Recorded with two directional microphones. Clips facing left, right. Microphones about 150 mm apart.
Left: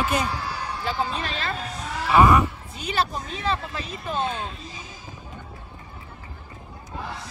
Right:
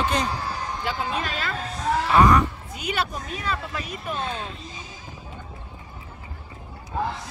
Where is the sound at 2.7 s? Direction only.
30° left (ahead or behind).